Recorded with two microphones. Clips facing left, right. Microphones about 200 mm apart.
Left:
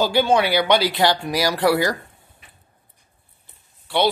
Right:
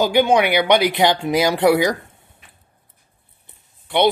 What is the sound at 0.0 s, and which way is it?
Speech, 15° right (ahead or behind).